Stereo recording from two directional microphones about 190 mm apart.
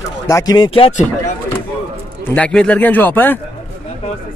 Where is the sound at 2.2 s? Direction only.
5° left (ahead or behind).